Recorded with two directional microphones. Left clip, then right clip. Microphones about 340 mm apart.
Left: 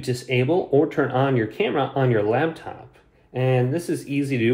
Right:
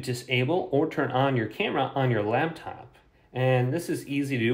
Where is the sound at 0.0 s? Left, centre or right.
Right.